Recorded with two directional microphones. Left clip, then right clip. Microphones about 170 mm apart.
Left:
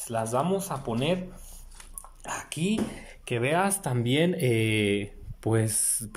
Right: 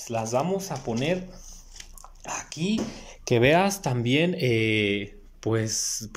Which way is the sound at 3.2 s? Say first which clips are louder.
Right 6 dB; 30° right (ahead or behind).